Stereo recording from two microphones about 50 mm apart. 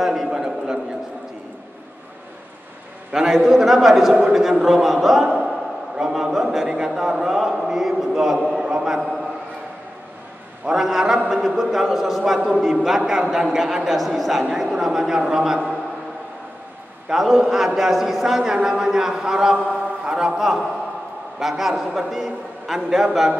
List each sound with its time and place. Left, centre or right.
0.0 s a sound: centre
3.3 s a man's voice: centre
8.6 s a sound: centre
10.6 s a man's voice: centre
11.2 s a man's voice: centre
14.4 s a man's voice: centre
17.1 s a man's voice: centre